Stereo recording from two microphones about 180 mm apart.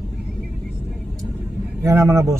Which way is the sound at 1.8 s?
15° right (ahead or behind).